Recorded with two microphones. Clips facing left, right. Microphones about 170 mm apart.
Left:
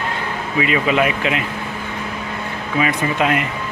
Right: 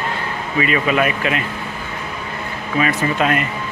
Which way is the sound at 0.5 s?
15° left (ahead or behind).